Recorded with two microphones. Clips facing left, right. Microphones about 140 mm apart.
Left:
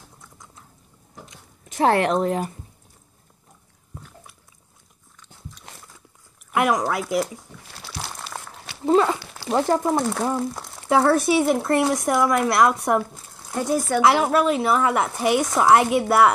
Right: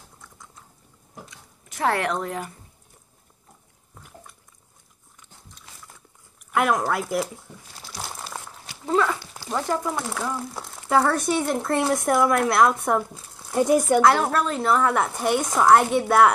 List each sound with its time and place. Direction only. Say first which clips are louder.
1.2 s speech: left 1 dB; 25° left (ahead or behind)
6.5 s speech: left 1 dB; centre (ahead or behind)
7.7 s a sound: left 1 dB; 70° left (ahead or behind)
8.8 s speech: left 4 dB; 25° left (ahead or behind)
9.7 s speech: left 5 dB; 40° left (ahead or behind)
10.4 s speech: left 6 dB; centre (ahead or behind)
13.7 s speech: right 2 dB; 20° right (ahead or behind)
14.0 s a woman's voice: left 2 dB; 10° left (ahead or behind)